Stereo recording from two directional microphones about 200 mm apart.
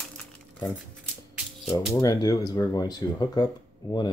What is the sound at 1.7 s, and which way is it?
Speech, 15° left (ahead or behind).